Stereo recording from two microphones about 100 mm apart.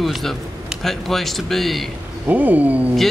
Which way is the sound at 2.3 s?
15° right (ahead or behind).